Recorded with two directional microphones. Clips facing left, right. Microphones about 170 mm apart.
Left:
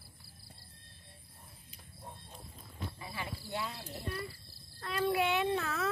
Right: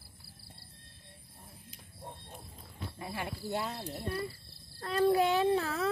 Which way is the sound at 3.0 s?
50° right (ahead or behind).